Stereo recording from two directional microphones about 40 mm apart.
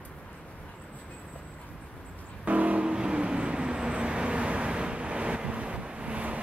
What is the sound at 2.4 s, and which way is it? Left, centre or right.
Vehicle, right.